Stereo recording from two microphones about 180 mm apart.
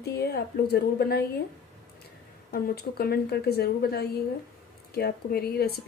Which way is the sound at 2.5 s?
60° left (ahead or behind).